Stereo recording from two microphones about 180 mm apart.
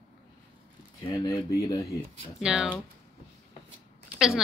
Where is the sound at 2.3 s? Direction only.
5° right (ahead or behind).